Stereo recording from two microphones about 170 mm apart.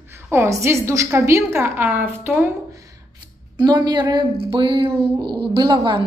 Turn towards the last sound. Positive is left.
turn(degrees=-25)  # may be behind; listen again after turning